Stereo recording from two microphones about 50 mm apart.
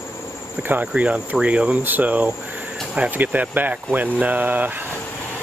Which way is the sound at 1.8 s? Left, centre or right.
Right.